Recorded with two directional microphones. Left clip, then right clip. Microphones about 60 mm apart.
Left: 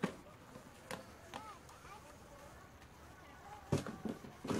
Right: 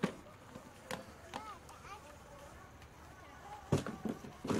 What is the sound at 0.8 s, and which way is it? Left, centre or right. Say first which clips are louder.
Chop: right 3 dB; centre.